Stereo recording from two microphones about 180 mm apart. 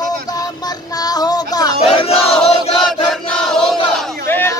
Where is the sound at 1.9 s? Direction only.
35° left (ahead or behind).